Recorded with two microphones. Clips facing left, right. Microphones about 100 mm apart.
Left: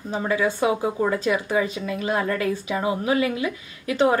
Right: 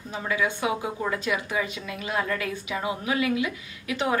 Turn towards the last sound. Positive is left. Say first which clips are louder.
# left 7 dB
turn(degrees=35)  # may be behind; listen again after turning